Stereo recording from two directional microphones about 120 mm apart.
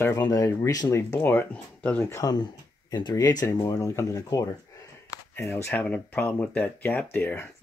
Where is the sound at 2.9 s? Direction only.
40° left (ahead or behind).